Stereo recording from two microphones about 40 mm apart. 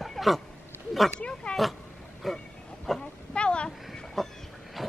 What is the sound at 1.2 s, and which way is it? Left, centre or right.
Oink, left.